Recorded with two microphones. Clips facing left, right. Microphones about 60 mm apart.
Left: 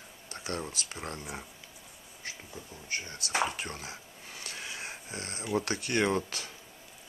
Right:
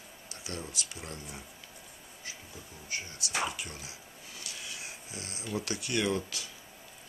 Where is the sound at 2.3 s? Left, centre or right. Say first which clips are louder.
Left 4 dB; left.